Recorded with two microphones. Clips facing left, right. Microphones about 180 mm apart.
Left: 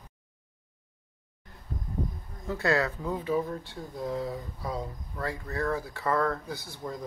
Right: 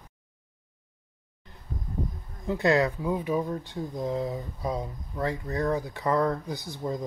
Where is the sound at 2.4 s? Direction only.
15° right (ahead or behind).